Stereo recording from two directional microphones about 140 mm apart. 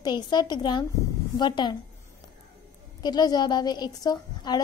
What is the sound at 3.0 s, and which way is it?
A woman's voice, 30° left (ahead or behind).